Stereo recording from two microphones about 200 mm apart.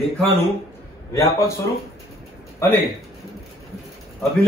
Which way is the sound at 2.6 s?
15° left (ahead or behind).